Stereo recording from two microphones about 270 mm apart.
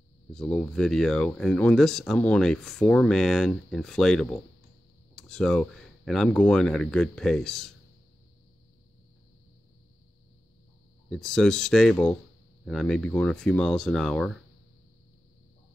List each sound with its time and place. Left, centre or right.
0.3 s speech: centre
11.1 s speech: centre